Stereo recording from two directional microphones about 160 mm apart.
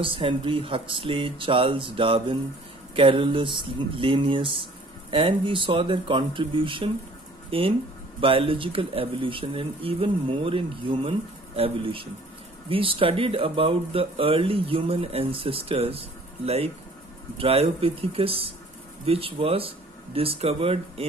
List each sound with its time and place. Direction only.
0.0 s speech: 35° right (ahead or behind)